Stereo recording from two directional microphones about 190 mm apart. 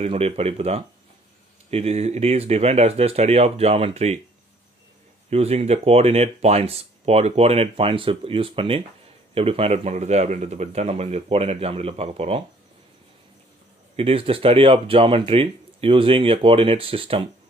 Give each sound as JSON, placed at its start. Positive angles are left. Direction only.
{"t": 0.0, "sound": "speech", "side_deg": -30}
{"t": 5.3, "sound": "speech", "side_deg": -35}
{"t": 13.9, "sound": "speech", "side_deg": -30}